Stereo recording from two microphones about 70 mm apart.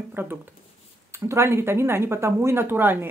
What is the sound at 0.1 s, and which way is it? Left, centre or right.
Speech, right.